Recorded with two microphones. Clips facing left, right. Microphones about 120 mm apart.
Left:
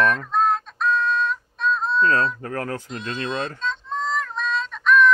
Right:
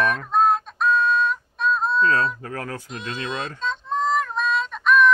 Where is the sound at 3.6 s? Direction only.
15° right (ahead or behind).